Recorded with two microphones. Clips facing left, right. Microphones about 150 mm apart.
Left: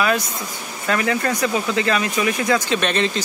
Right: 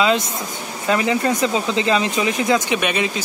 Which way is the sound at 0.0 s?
20° right (ahead or behind).